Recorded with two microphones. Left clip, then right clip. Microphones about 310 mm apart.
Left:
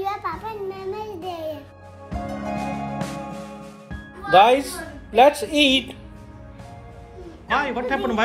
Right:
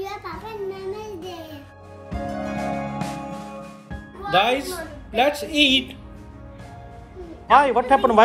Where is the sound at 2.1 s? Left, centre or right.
Centre.